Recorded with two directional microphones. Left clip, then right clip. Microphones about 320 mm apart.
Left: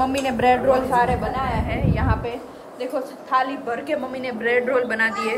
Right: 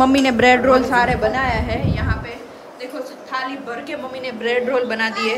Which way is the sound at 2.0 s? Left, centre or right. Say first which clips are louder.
Left 2 dB; centre.